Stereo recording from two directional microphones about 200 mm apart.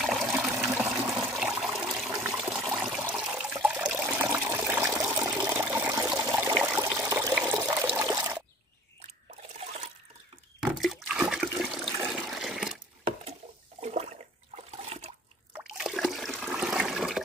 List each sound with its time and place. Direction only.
0.0 s water: centre (ahead or behind)
2.0 s water: 15° right (ahead or behind)
2.3 s water: 5° right (ahead or behind)
6.1 s trickle: 15° right (ahead or behind)
6.6 s water: 10° right (ahead or behind)
10.7 s toilet flush: centre (ahead or behind)
12.0 s water: centre (ahead or behind)
13.0 s water: 30° right (ahead or behind)
15.5 s toilet flush: centre (ahead or behind)